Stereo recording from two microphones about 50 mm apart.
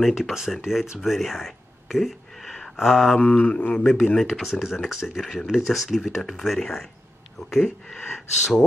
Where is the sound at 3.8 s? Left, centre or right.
Centre.